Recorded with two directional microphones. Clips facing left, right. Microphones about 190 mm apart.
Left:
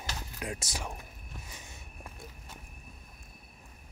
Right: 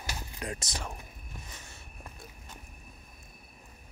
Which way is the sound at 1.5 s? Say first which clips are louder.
Even; 15° left (ahead or behind).